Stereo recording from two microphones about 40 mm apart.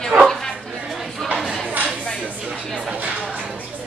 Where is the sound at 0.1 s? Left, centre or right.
Centre.